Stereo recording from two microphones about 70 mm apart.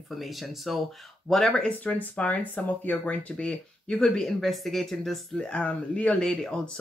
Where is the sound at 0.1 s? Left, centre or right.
Centre.